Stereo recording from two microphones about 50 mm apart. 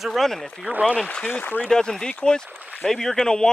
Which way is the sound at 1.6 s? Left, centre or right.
Centre.